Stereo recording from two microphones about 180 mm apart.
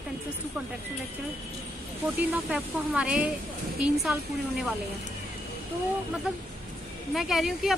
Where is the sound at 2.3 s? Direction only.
5° right (ahead or behind).